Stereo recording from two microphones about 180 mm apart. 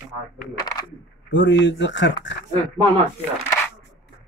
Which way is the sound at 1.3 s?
90° left.